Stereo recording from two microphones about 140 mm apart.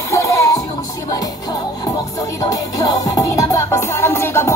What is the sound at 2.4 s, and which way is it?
Music, 25° left (ahead or behind).